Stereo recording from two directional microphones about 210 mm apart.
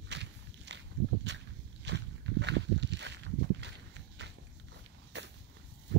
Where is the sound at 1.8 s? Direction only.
55° right (ahead or behind).